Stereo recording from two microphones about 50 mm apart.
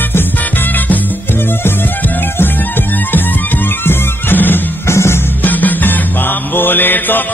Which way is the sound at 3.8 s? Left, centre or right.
Left.